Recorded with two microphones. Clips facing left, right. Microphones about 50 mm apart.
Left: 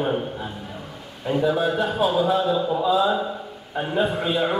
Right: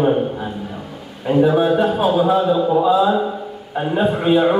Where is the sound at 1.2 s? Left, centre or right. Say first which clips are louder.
Right 7 dB; right.